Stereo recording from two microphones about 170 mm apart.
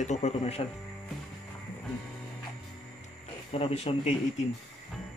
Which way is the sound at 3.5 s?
35° left (ahead or behind).